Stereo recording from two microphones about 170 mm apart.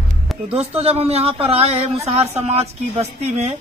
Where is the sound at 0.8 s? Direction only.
35° right (ahead or behind).